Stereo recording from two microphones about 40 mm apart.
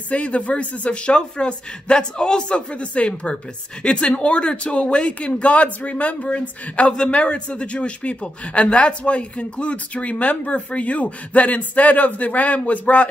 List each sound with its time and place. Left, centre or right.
0.1 s speech: left